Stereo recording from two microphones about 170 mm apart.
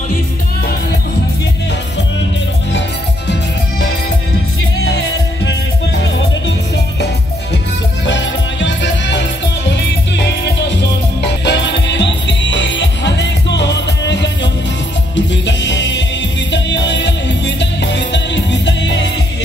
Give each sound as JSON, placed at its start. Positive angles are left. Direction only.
{"t": 4.8, "sound": "music", "side_deg": 90}
{"t": 8.1, "sound": "music", "side_deg": 90}
{"t": 11.4, "sound": "music", "side_deg": 90}